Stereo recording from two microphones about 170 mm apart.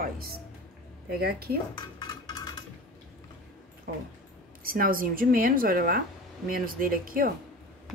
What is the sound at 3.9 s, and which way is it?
Speech, 60° right (ahead or behind).